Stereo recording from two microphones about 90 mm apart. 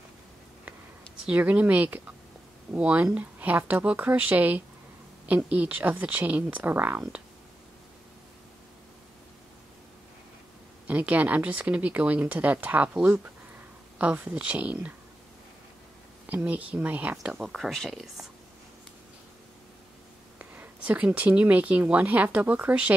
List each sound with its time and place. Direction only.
1.2 s speech: 15° right (ahead or behind)
10.9 s speech: 15° right (ahead or behind)
16.4 s speech: 15° right (ahead or behind)
17.2 s speech: 5° right (ahead or behind)
20.3 s speech: 20° right (ahead or behind)